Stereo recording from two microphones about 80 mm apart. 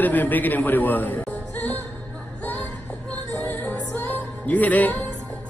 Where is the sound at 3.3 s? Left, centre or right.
Left.